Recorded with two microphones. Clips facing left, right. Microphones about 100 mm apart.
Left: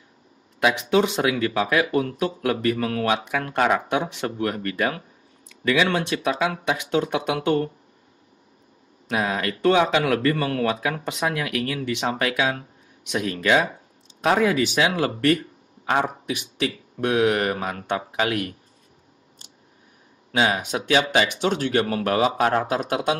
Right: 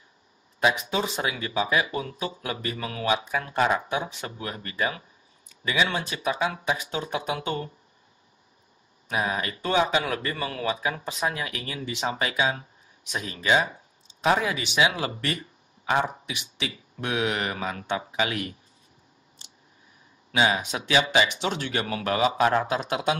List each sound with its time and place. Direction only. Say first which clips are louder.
0.6 s speech: left 5 dB; 65° left (ahead or behind)
9.1 s speech: left 3 dB; 70° left (ahead or behind)
14.2 s speech: left 4 dB; 50° left (ahead or behind)
20.2 s speech: left 2 dB; 50° left (ahead or behind)